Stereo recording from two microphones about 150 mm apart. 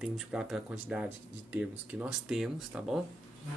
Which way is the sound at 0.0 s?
5° right (ahead or behind).